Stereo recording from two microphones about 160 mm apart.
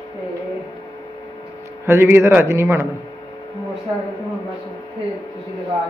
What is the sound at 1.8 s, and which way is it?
A man's voice, 15° right (ahead or behind).